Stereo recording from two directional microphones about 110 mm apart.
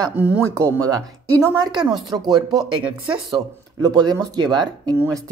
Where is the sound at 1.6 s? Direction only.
40° right (ahead or behind).